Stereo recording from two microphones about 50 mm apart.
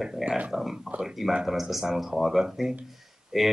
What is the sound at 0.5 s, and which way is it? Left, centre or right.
Speech, centre.